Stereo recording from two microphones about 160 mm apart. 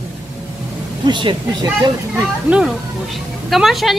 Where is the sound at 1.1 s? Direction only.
30° right (ahead or behind).